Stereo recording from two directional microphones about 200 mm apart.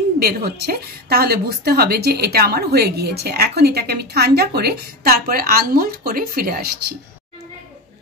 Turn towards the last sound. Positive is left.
turn(degrees=-45)  # may be behind; listen again after turning